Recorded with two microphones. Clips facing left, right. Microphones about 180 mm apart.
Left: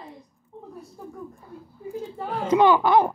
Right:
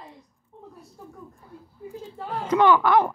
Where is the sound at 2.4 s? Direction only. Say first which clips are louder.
Left 1 dB; 15° left (ahead or behind).